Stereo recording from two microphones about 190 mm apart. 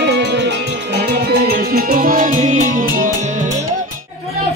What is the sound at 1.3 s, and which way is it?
Music, 55° right (ahead or behind).